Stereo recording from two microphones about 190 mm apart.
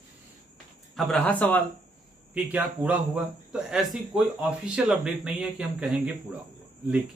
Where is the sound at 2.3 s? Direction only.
10° right (ahead or behind).